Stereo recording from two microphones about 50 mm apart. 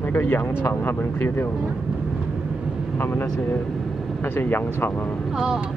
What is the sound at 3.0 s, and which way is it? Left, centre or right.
Speech, left.